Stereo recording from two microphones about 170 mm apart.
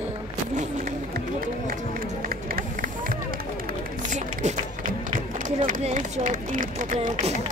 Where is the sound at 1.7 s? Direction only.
55° right (ahead or behind).